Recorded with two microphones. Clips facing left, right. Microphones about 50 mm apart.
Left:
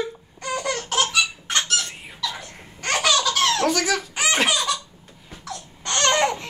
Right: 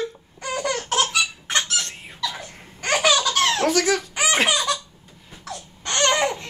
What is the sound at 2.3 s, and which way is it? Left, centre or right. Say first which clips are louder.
Laughter: even; centre.